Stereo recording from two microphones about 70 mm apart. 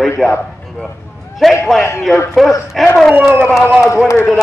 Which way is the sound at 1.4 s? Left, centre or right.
Centre.